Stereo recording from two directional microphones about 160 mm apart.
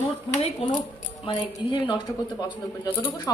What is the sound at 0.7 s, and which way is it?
A woman's voice, 30° left (ahead or behind).